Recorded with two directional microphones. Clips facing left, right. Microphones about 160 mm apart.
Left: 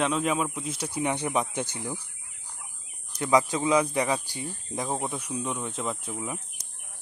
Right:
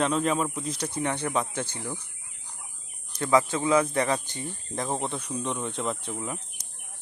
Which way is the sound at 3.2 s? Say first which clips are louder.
Even; 15° left (ahead or behind).